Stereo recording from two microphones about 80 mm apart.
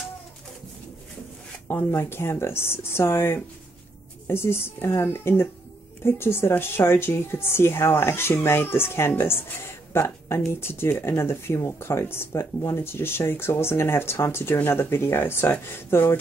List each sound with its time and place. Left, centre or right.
1.7 s speech: left